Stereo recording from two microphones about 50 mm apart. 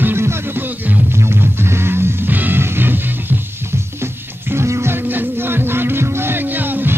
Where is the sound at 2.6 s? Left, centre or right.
Right.